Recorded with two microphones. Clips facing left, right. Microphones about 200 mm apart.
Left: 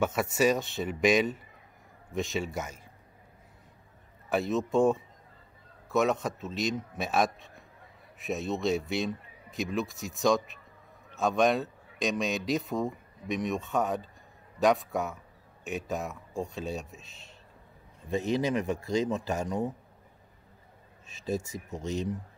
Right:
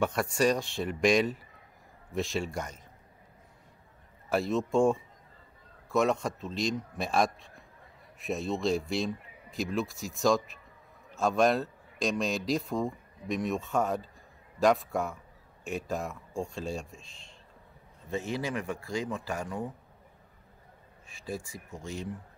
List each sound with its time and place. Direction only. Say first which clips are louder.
0.0 s speech: left 1 dB; 5° left (ahead or behind)
4.3 s speech: even; centre (ahead or behind)
7.3 s a sound: left 1 dB; centre (ahead or behind)
8.2 s speech: even; centre (ahead or behind)
18.1 s speech: left 5 dB; 20° left (ahead or behind)
21.1 s speech: left 5 dB; 20° left (ahead or behind)